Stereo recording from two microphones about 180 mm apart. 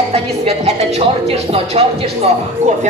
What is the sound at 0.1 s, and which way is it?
Speech, 35° right (ahead or behind).